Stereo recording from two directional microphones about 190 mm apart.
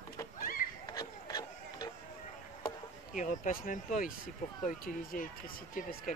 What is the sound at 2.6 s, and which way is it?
Speech, 45° left (ahead or behind).